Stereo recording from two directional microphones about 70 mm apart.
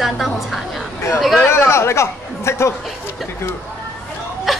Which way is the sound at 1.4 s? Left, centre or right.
Left.